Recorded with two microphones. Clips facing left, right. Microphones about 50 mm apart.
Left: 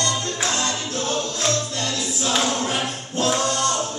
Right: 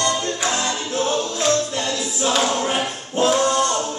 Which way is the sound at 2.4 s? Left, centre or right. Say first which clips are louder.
Right 2 dB; centre.